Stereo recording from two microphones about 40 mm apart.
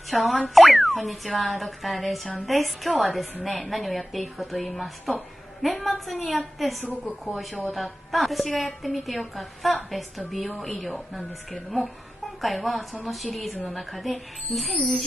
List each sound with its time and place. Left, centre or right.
0.1 s a woman's voice: centre
12.4 s a woman's voice: centre
14.7 s speech: left